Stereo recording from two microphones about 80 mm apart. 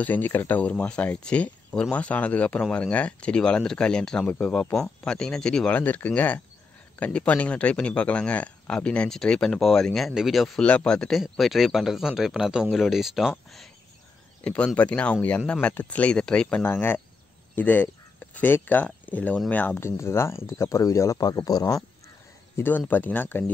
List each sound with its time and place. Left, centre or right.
0.0 s speech: left
5.8 s speech: left; by 10.6 s centre
10.6 s speech: centre
14.4 s speech: centre
16.6 s speech: left
19.8 s speech: left
22.6 s speech: left